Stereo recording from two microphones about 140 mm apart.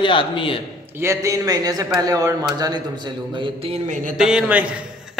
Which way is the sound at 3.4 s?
40° right (ahead or behind).